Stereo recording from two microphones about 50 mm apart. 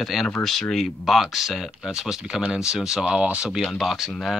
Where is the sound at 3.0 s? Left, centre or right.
Right.